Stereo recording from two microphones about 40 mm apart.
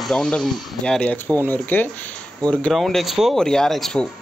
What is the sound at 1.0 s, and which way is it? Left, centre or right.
Speech, left.